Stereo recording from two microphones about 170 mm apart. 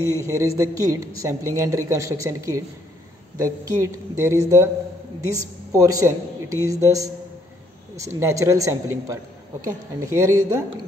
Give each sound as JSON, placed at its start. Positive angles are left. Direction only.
{"t": 0.3, "sound": "a woman's voice", "side_deg": -20}